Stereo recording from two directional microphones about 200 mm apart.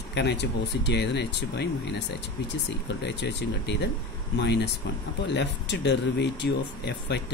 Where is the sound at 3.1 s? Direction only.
60° left (ahead or behind).